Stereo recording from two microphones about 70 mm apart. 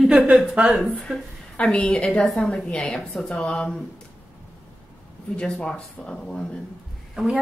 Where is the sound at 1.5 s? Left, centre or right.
Centre.